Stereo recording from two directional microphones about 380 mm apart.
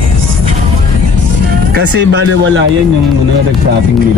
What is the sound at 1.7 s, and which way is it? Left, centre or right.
Speech, right.